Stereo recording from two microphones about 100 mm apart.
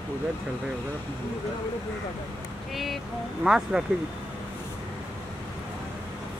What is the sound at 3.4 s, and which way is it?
Speech, 5° right (ahead or behind).